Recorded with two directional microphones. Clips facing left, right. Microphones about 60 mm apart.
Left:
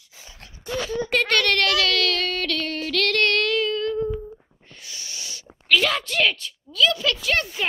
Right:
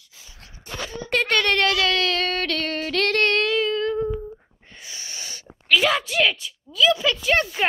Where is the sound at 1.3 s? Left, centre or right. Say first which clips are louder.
Right 2 dB; centre.